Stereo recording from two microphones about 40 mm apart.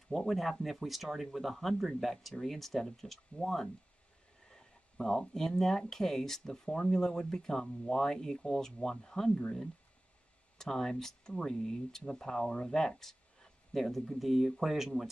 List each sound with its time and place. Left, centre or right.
0.1 s speech: centre
4.5 s a sound: centre
5.5 s speech: centre
10.6 s speech: centre